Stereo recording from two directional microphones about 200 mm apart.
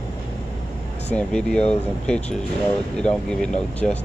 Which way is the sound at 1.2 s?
5° left (ahead or behind).